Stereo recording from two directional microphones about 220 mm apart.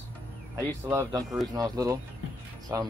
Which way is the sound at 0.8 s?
10° right (ahead or behind).